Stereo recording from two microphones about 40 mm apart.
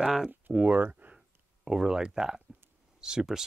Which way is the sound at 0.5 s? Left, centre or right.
Right.